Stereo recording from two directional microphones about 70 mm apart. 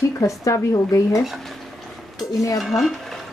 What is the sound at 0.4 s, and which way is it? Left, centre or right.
Speech, left.